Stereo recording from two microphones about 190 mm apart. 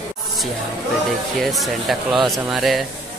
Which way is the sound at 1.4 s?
Centre (ahead or behind).